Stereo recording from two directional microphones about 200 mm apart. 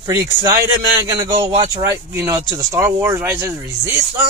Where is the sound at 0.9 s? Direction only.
20° right (ahead or behind).